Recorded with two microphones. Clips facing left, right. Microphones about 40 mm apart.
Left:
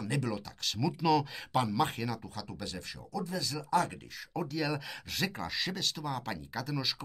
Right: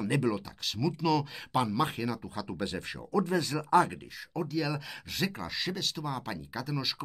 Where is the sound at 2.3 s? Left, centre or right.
Right.